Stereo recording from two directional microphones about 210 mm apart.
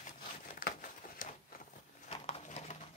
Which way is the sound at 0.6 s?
40° left (ahead or behind).